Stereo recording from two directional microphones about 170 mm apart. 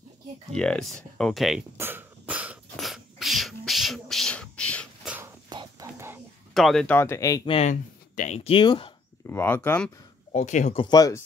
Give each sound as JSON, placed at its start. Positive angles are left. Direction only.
{"t": 0.6, "sound": "speech", "side_deg": 5}
{"t": 1.8, "sound": "sneeze", "side_deg": -10}
{"t": 5.0, "sound": "a sound", "side_deg": -10}
{"t": 5.5, "sound": "a sound", "side_deg": -25}
{"t": 5.9, "sound": "a sound", "side_deg": -15}
{"t": 6.5, "sound": "speech", "side_deg": 0}
{"t": 7.4, "sound": "speech", "side_deg": 35}
{"t": 9.3, "sound": "speech", "side_deg": 15}
{"t": 10.3, "sound": "speech", "side_deg": 45}
{"t": 10.8, "sound": "speech", "side_deg": 25}